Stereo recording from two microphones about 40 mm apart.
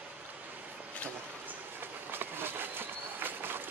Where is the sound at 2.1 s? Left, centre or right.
Right.